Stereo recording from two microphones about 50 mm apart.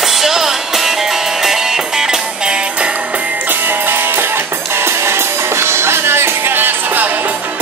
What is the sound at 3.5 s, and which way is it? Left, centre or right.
Music, right.